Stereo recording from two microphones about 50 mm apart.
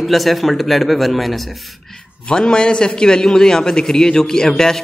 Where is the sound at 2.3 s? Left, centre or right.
Centre.